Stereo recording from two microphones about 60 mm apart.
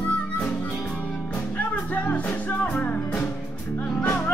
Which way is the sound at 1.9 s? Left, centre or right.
Left.